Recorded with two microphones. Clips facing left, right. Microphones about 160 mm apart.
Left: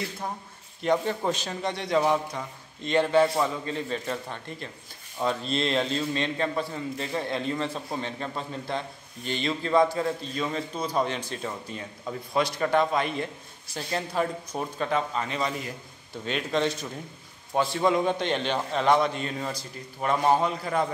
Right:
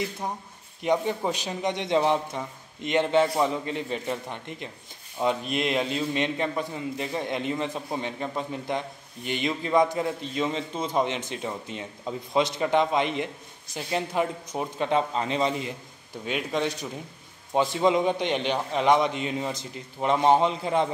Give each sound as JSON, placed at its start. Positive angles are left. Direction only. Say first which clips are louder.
{"t": 0.8, "sound": "a man's voice", "louder": "even", "side_deg": -15}
{"t": 16.3, "sound": "a man's voice", "louder": "left 1 dB", "side_deg": -10}